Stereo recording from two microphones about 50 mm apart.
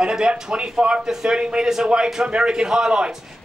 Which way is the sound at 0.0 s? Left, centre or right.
Centre.